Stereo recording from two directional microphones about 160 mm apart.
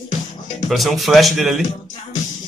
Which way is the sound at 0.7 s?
Centre (ahead or behind).